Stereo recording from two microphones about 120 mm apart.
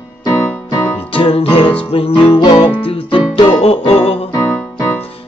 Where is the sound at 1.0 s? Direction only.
50° left (ahead or behind).